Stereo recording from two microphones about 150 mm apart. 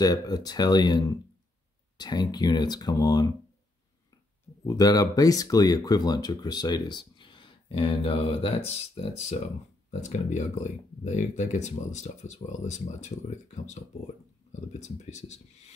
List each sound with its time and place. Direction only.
0.0 s speech: 25° left (ahead or behind)
4.6 s speech: 25° left (ahead or behind); by 9.4 s 40° left (ahead or behind)
9.8 s speech: 50° left (ahead or behind)
14.5 s speech: 50° left (ahead or behind)